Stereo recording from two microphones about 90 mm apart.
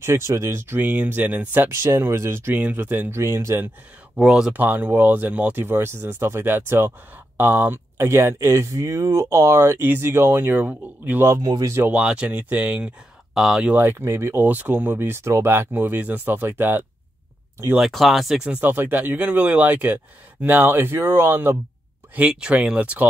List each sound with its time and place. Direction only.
0.0 s speech: 30° right (ahead or behind)
2.5 s speech: 20° right (ahead or behind)
4.2 s speech: 10° right (ahead or behind)
4.6 s speech: 20° right (ahead or behind)
10.5 s speech: 15° right (ahead or behind)
11.2 s speech: 30° right (ahead or behind)
11.9 s speech: 15° right (ahead or behind)
13.7 s speech: 25° right (ahead or behind)
17.7 s speech: centre (ahead or behind)
18.4 s speech: 10° right (ahead or behind)
22.1 s speech: 10° right (ahead or behind)